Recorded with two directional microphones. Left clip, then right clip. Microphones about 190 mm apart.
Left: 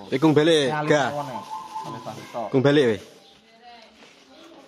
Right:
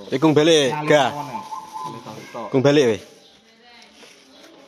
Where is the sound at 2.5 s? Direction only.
5° left (ahead or behind).